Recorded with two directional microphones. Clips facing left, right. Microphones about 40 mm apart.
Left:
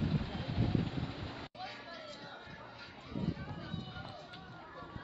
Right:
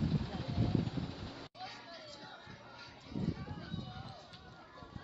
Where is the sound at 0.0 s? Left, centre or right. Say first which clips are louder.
Even; left.